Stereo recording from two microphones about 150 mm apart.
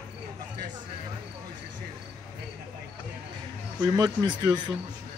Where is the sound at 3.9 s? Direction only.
25° right (ahead or behind).